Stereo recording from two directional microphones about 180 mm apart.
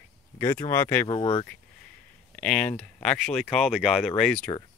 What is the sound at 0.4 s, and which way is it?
Speech, 15° left (ahead or behind).